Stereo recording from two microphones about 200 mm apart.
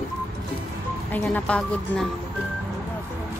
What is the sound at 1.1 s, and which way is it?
Music, 5° left (ahead or behind).